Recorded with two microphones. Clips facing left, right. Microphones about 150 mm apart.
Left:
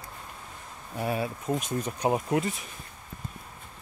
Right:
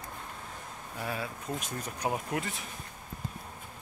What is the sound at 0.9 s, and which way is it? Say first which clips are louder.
Speech: left 7 dB; 25° left (ahead or behind).